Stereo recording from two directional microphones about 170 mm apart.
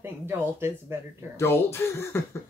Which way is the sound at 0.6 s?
15° right (ahead or behind).